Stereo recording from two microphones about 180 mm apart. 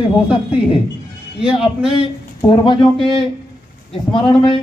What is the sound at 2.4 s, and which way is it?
Speech, 25° left (ahead or behind).